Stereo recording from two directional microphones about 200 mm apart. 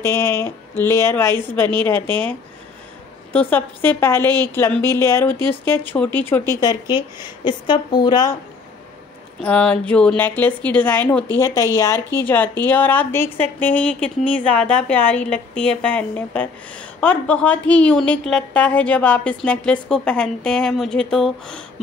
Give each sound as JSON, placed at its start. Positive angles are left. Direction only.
{"t": 0.0, "sound": "speech", "side_deg": 15}
{"t": 2.0, "sound": "speech", "side_deg": -25}
{"t": 3.3, "sound": "speech", "side_deg": 10}
{"t": 6.6, "sound": "speech", "side_deg": 20}
{"t": 9.4, "sound": "speech", "side_deg": 5}
{"t": 12.6, "sound": "speech", "side_deg": 10}